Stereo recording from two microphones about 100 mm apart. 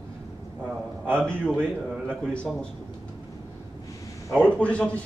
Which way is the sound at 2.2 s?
10° left (ahead or behind).